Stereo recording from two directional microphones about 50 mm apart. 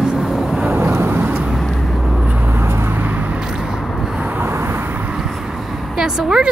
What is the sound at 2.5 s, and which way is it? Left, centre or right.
Vehicle, right.